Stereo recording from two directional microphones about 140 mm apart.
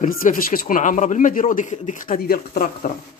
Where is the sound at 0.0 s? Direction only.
75° left (ahead or behind).